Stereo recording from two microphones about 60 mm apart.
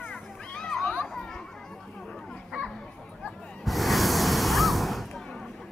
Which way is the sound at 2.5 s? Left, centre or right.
Centre.